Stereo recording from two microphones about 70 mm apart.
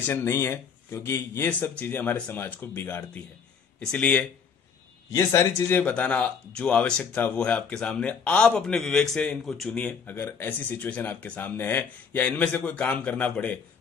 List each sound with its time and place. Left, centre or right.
0.0 s speech: left
1.5 s speech: left
3.8 s speech: centre
5.1 s speech: left
5.8 s speech: centre
10.0 s speech: left